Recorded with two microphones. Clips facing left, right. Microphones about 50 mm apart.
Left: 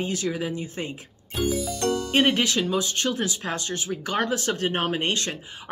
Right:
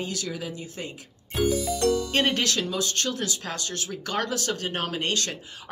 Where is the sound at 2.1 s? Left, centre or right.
Centre.